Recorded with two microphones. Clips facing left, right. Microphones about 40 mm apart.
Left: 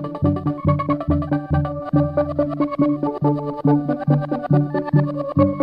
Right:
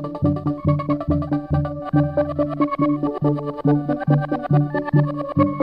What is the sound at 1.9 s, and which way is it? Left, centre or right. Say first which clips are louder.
Music: even; centre.